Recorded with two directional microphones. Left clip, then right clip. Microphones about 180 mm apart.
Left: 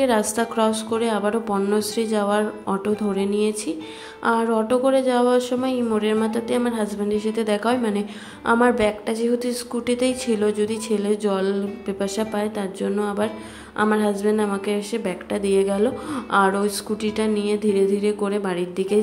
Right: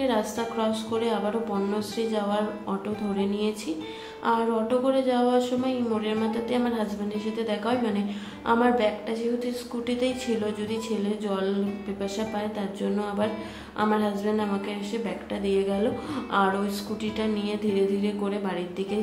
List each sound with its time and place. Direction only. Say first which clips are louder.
0.0 s a woman's voice: left 6 dB; 35° left (ahead or behind)